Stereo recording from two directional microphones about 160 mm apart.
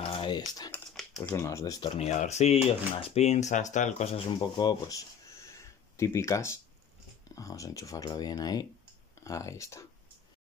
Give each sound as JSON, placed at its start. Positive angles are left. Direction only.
{"t": 0.2, "sound": "speech", "side_deg": 25}
{"t": 0.7, "sound": "typing", "side_deg": 5}
{"t": 1.3, "sound": "speech", "side_deg": 15}
{"t": 2.0, "sound": "speech", "side_deg": 45}